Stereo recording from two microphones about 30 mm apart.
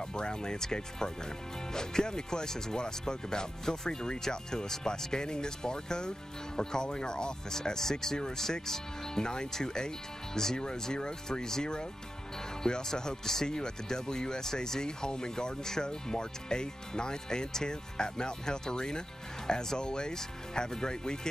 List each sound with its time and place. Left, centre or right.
0.1 s speech: left
9.2 s speech: left